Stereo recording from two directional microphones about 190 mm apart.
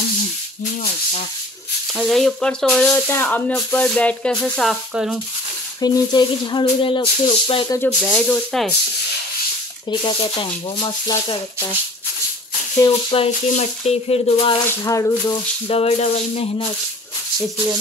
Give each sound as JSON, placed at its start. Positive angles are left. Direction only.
{"t": 2.0, "sound": "speech", "side_deg": 0}
{"t": 5.8, "sound": "speech", "side_deg": 20}
{"t": 8.0, "sound": "speech", "side_deg": 10}
{"t": 9.8, "sound": "speech", "side_deg": 25}
{"t": 12.8, "sound": "speech", "side_deg": 30}
{"t": 14.7, "sound": "speech", "side_deg": 15}
{"t": 15.7, "sound": "speech", "side_deg": 35}